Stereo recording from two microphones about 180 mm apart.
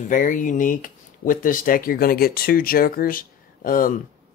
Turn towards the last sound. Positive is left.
turn(degrees=50)  # may be behind; listen again after turning